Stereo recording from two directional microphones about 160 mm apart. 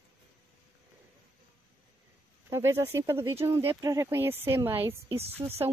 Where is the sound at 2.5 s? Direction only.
15° right (ahead or behind).